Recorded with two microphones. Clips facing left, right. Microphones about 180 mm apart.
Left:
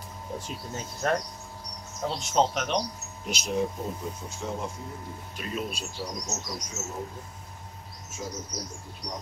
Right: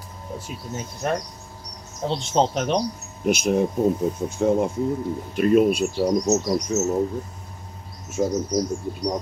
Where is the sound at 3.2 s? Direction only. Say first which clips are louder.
Right 9 dB; 55° right (ahead or behind).